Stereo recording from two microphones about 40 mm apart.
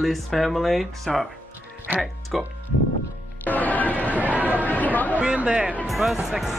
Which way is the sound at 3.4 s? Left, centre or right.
Left.